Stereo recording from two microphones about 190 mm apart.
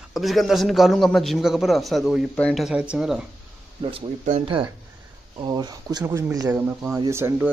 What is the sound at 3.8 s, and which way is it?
Speech, 30° right (ahead or behind).